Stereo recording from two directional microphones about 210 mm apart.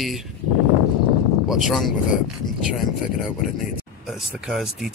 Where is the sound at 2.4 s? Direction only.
20° left (ahead or behind).